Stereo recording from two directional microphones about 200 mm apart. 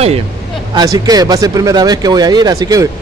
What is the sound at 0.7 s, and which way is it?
Speech, 20° right (ahead or behind).